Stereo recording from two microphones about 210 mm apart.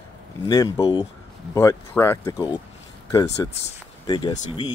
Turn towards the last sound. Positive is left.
turn(degrees=25)  # may be behind; listen again after turning